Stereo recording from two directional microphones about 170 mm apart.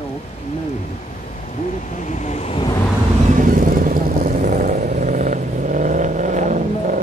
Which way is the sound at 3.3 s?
50° right (ahead or behind).